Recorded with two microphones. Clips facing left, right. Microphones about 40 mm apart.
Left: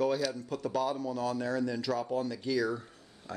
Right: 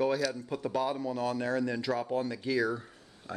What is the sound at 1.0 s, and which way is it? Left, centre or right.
Speech, right.